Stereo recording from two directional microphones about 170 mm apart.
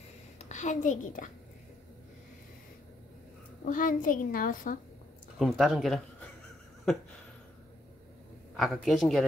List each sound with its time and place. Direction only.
0.4 s a woman's voice: 45° left (ahead or behind)
3.6 s a child's voice: 50° left (ahead or behind)
5.4 s speech: centre (ahead or behind)
8.7 s speech: centre (ahead or behind)